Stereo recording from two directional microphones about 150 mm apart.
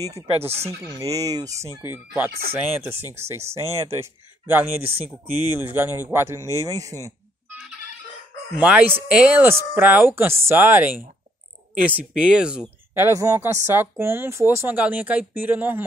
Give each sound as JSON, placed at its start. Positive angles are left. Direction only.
{"t": 0.9, "sound": "speech", "side_deg": -20}
{"t": 1.8, "sound": "speech", "side_deg": -10}
{"t": 8.5, "sound": "speech", "side_deg": -10}
{"t": 12.9, "sound": "speech", "side_deg": -20}